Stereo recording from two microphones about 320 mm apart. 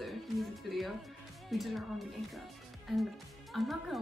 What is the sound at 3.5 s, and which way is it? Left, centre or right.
Music, centre.